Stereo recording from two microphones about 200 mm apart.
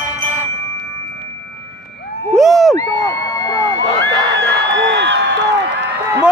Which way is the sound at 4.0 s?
65° right (ahead or behind).